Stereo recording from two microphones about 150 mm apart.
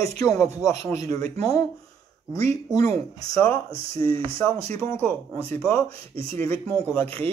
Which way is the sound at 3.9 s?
35° right (ahead or behind).